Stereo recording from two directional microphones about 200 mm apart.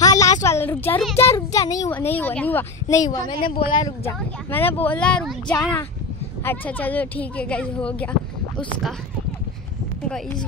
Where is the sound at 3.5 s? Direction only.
25° left (ahead or behind).